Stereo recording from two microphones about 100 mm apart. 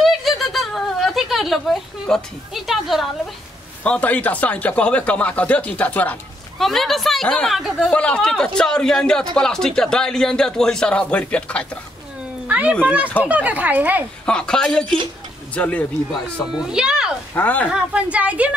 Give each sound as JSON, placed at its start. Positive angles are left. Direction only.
{"t": 0.0, "sound": "a sound", "side_deg": 0}
{"t": 3.8, "sound": "speech", "side_deg": 15}
{"t": 6.6, "sound": "a woman's voice", "side_deg": 0}
{"t": 7.9, "sound": "speech", "side_deg": 10}
{"t": 12.4, "sound": "speech", "side_deg": -15}
{"t": 14.2, "sound": "speech", "side_deg": 10}
{"t": 16.5, "sound": "speech", "side_deg": -5}
{"t": 17.3, "sound": "speech", "side_deg": 20}
{"t": 17.6, "sound": "speech", "side_deg": -10}